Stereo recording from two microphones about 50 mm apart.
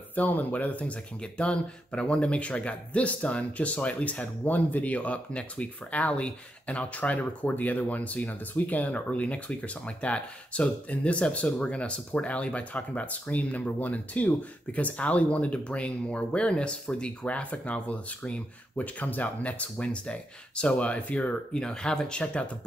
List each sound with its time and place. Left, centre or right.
0.1 s speech: left
21.5 s speech: centre